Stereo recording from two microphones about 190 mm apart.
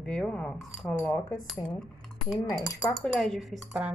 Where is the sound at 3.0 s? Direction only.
5° left (ahead or behind).